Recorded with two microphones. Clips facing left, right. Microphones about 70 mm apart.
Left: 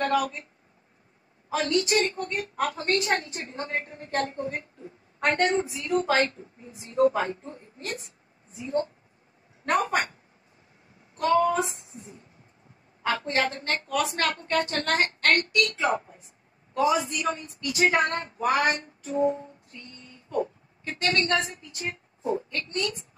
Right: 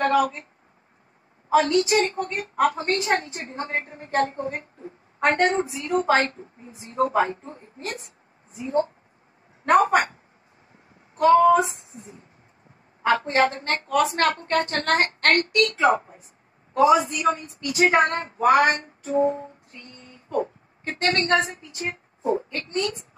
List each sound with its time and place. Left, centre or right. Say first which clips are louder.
0.0 s a woman's voice: right 5 dB; right
1.5 s a woman's voice: right 6 dB; right
11.1 s a woman's voice: right 7 dB; right
13.0 s a woman's voice: right 6 dB; right